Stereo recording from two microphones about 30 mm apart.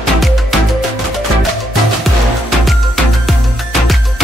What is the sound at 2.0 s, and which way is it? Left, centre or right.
Music, centre.